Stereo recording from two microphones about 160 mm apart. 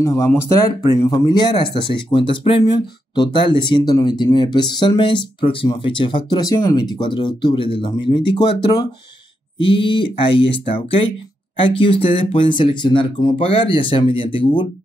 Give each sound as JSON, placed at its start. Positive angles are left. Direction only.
{"t": 0.0, "sound": "speech", "side_deg": 20}
{"t": 9.6, "sound": "speech", "side_deg": 30}
{"t": 11.5, "sound": "speech", "side_deg": 35}